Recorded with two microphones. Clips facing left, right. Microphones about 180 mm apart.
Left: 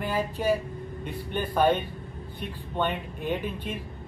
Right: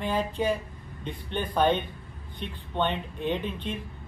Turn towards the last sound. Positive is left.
turn(degrees=10)  # may be behind; listen again after turning